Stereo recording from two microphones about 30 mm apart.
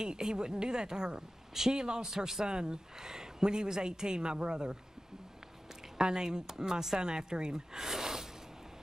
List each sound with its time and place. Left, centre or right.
0.0 s speech: right
5.9 s speech: right